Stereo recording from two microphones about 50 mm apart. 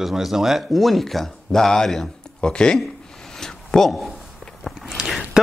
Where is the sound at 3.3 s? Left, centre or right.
Centre.